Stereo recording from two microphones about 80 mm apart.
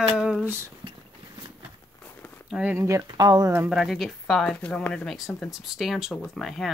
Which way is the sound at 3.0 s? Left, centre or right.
Right.